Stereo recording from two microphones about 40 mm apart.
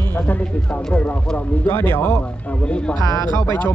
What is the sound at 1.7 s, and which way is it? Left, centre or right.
Speech, left.